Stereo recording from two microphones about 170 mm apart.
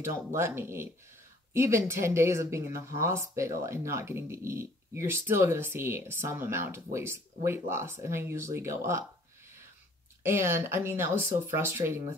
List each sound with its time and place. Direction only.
0.1 s speech: 15° right (ahead or behind)
10.2 s speech: 15° right (ahead or behind)